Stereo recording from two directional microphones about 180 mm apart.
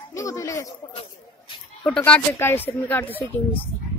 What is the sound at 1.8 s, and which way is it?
Speech, 5° left (ahead or behind).